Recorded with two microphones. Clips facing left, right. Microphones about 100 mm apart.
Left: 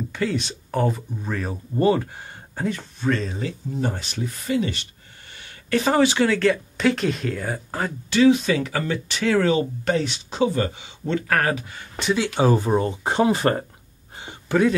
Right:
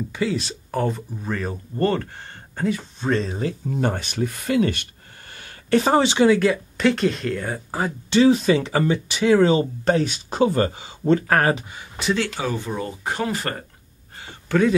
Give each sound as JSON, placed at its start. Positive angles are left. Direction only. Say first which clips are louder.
{"t": 0.1, "sound": "speech", "louder": "right 1 dB", "side_deg": -5}
{"t": 3.0, "sound": "speech", "louder": "even", "side_deg": -20}
{"t": 3.7, "sound": "speech", "louder": "right 2 dB", "side_deg": -60}
{"t": 5.7, "sound": "speech", "louder": "right 1 dB", "side_deg": -25}
{"t": 6.8, "sound": "speech", "louder": "right 3 dB", "side_deg": 0}
{"t": 8.1, "sound": "speech", "louder": "right 1 dB", "side_deg": -30}
{"t": 9.4, "sound": "speech", "louder": "right 3 dB", "side_deg": -30}
{"t": 12.4, "sound": "speech", "louder": "left 7 dB", "side_deg": 35}
{"t": 14.1, "sound": "a sound", "louder": "even", "side_deg": 20}